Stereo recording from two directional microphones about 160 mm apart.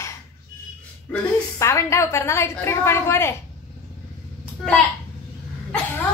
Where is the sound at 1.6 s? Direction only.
20° left (ahead or behind).